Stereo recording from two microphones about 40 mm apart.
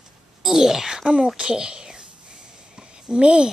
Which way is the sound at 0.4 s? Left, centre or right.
Centre.